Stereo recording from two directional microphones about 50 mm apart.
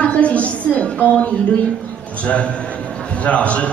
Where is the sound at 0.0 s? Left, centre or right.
Left.